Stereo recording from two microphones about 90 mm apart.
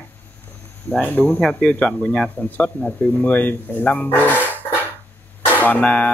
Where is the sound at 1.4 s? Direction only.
5° left (ahead or behind).